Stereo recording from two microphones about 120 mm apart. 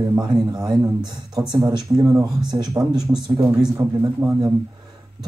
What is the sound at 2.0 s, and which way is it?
A man's voice, 30° right (ahead or behind).